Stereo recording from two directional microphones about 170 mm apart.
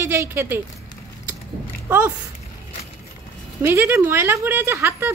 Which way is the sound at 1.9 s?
10° right (ahead or behind).